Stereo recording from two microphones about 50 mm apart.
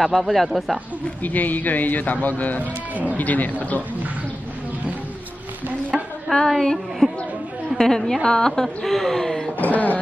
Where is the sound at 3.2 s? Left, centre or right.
Left.